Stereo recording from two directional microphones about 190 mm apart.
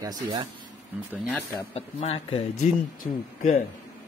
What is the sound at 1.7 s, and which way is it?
Speech, 30° left (ahead or behind).